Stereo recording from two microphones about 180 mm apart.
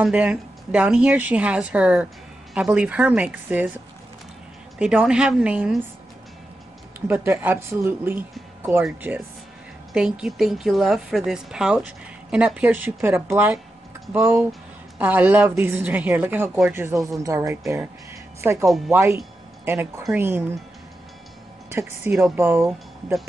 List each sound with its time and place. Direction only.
0.0 s a woman's voice: 5° right (ahead or behind)
7.1 s a woman's voice: 10° right (ahead or behind)
21.6 s speech: 15° right (ahead or behind)
22.1 s a woman's voice: 5° right (ahead or behind)